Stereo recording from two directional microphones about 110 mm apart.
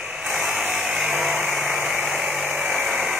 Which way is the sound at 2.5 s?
10° right (ahead or behind).